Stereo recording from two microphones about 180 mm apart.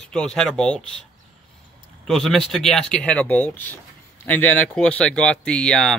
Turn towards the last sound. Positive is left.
turn(degrees=5)  # may be behind; listen again after turning